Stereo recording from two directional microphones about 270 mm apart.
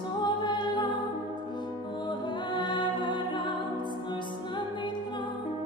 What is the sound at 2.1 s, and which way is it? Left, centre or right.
Music, centre.